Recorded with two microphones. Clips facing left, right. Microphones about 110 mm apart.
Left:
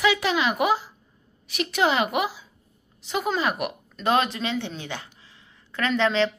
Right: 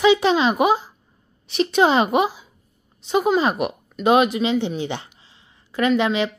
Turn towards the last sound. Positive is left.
turn(degrees=-10)  # may be behind; listen again after turning